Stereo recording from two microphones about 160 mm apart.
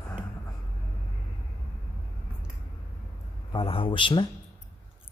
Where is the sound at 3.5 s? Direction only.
35° left (ahead or behind).